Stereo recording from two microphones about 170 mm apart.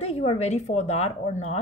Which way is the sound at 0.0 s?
35° left (ahead or behind).